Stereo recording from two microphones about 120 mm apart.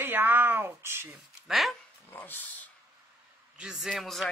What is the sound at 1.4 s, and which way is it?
Speech, centre (ahead or behind).